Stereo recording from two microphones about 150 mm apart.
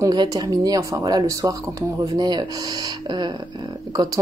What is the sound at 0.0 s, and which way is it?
Speech, 25° right (ahead or behind).